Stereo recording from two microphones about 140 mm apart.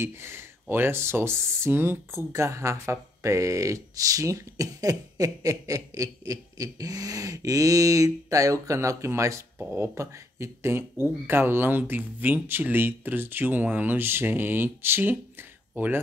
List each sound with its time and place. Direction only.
0.0 s speech: 15° right (ahead or behind)